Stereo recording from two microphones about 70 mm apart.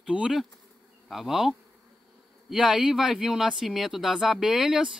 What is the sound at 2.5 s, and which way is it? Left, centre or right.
Speech, centre.